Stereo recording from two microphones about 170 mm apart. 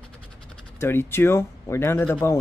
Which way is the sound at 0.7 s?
15° left (ahead or behind).